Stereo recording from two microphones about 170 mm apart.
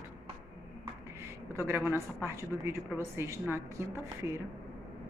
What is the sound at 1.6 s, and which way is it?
Speech, 15° right (ahead or behind).